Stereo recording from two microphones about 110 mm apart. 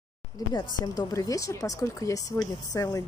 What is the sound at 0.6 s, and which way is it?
Speech, 35° left (ahead or behind).